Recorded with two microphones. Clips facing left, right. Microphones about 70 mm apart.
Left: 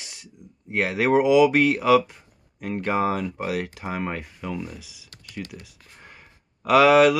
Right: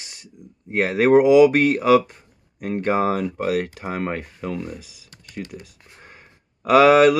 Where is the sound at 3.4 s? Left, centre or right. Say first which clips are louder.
Right 5 dB; right.